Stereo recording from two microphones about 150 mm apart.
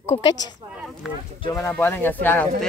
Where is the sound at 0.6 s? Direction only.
5° right (ahead or behind).